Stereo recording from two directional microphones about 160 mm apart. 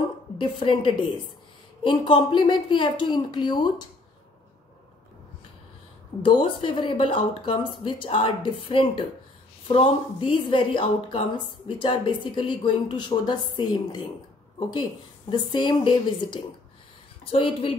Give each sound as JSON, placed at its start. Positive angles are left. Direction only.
{"t": 0.4, "sound": "a woman's voice", "side_deg": 30}
{"t": 6.2, "sound": "a woman's voice", "side_deg": 30}